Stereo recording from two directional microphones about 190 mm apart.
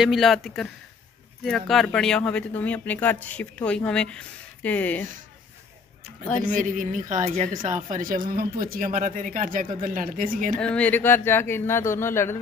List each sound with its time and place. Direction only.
0.0 s speech: centre (ahead or behind)
6.5 s speech: 45° right (ahead or behind)
10.6 s speech: 5° left (ahead or behind)